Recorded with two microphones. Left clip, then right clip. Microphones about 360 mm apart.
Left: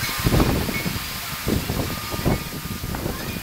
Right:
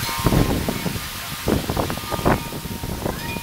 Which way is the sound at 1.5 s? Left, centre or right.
Right.